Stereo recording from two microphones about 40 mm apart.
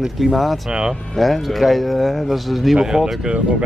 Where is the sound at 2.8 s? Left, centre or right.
Centre.